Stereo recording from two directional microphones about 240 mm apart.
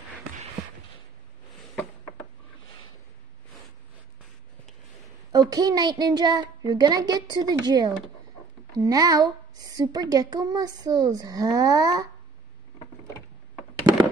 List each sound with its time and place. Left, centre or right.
5.3 s a child's voice: centre